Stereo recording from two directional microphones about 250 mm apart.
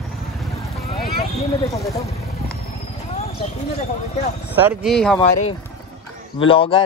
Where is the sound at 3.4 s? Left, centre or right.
Left.